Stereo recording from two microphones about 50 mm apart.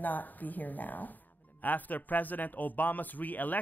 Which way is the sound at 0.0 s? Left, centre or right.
Left.